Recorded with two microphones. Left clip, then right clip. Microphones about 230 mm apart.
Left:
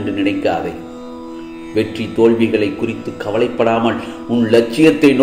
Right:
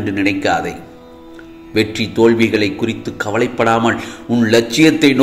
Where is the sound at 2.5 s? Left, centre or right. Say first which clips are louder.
Even; right.